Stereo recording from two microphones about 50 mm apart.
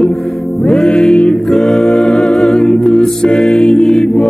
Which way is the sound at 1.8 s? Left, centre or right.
Centre.